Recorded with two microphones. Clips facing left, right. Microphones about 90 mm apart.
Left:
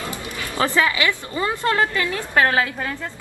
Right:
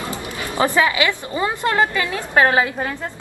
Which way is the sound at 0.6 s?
20° right (ahead or behind).